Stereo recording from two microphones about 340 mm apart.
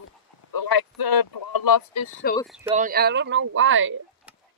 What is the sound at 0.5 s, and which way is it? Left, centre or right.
Speech, left.